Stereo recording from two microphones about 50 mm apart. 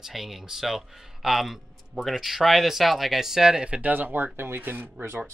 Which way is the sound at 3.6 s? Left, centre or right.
Right.